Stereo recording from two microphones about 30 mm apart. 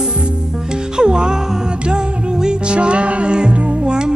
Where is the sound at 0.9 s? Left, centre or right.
Right.